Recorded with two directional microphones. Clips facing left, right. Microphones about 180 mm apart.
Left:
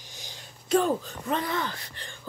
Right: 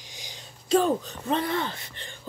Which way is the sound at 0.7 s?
25° right (ahead or behind).